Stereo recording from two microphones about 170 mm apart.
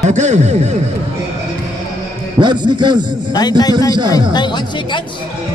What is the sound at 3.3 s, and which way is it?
Speech, 20° left (ahead or behind).